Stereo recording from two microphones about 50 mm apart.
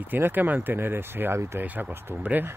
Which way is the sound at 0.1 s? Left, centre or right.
Right.